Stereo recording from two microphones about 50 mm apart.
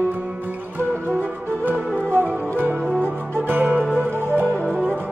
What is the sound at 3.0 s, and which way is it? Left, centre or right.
Music, right.